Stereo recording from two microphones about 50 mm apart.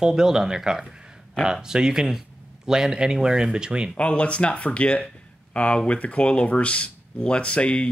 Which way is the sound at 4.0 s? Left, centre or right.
Left.